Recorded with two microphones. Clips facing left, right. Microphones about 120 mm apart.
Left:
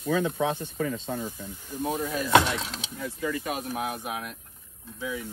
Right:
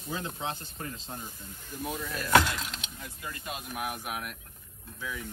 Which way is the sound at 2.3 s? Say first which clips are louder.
Left 2 dB; 25° left (ahead or behind).